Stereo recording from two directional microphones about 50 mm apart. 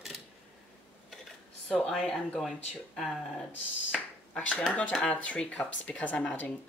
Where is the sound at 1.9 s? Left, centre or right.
Centre.